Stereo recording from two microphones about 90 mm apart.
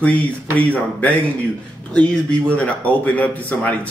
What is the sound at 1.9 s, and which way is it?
Speech, 15° left (ahead or behind).